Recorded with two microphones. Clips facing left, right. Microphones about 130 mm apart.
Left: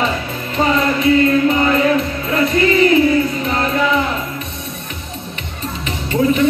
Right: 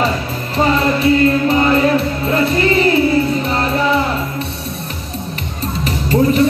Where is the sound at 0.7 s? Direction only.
30° right (ahead or behind).